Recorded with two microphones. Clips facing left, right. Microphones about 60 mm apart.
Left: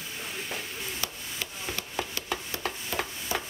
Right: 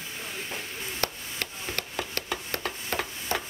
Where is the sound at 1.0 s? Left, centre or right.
Right.